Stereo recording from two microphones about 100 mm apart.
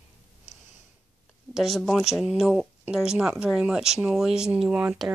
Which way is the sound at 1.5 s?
Centre (ahead or behind).